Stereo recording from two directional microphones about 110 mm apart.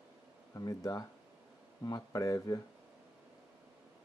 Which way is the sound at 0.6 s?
30° left (ahead or behind).